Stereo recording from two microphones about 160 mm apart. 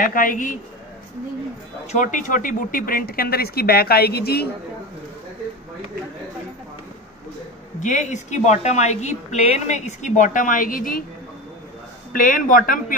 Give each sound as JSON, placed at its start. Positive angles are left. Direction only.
{"t": 0.0, "sound": "speech", "side_deg": 60}
{"t": 1.9, "sound": "speech", "side_deg": 50}
{"t": 7.8, "sound": "a woman's voice", "side_deg": 50}
{"t": 12.1, "sound": "speech", "side_deg": 60}